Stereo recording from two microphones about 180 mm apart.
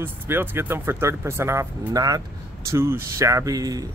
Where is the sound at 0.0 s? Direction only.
10° right (ahead or behind).